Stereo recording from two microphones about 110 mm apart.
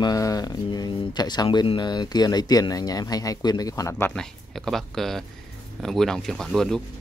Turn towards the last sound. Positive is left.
turn(degrees=5)  # may be behind; listen again after turning